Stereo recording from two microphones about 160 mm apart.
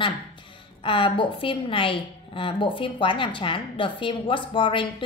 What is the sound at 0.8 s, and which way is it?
A woman's voice, 35° left (ahead or behind).